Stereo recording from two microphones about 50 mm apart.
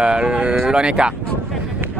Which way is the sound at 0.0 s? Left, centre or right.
Centre.